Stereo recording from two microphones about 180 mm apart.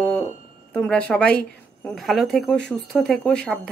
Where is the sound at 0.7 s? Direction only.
5° left (ahead or behind).